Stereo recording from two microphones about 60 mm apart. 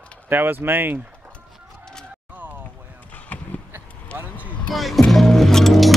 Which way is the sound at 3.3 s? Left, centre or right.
Left.